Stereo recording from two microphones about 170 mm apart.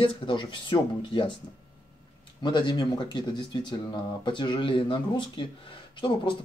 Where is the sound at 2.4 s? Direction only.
25° left (ahead or behind).